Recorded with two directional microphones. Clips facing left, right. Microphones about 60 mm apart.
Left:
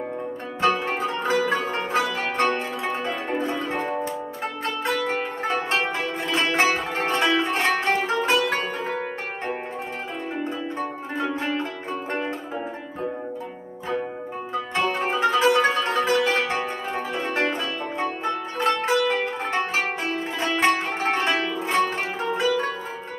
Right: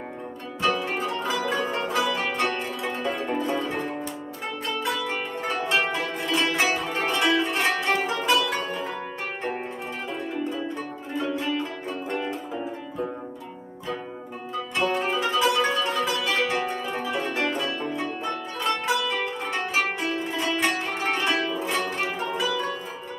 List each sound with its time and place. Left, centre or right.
0.6 s zither: left
14.5 s music: left